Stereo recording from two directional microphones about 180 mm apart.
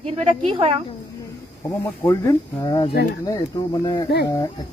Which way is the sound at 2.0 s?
20° left (ahead or behind).